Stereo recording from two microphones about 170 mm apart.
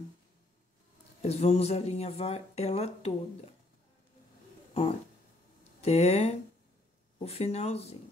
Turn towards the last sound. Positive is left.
turn(degrees=40)  # may be behind; listen again after turning